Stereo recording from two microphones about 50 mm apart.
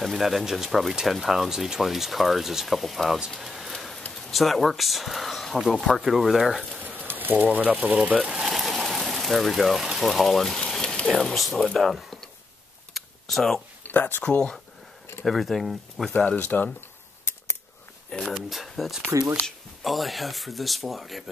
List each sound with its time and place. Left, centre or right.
0.0 s speech: centre
3.3 s a sound: centre
4.3 s speech: centre
6.8 s a sound: right
7.3 s speech: right
8.5 s a sound: centre
11.1 s speech: centre
12.9 s computer keyboard: centre
13.8 s speech: left
14.2 s speech: left
15.2 s speech: centre
16.3 s speech: left
17.2 s scissors: left
18.2 s speech: centre